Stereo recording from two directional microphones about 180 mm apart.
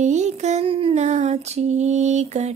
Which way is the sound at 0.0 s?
40° right (ahead or behind).